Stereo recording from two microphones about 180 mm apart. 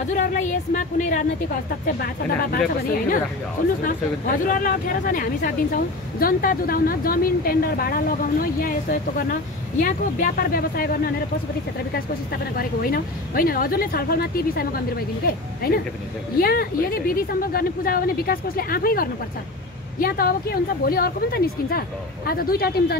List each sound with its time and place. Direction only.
0.0 s a sound: 45° left (ahead or behind)
2.5 s speech: 55° left (ahead or behind)
12.5 s speech: 55° left (ahead or behind)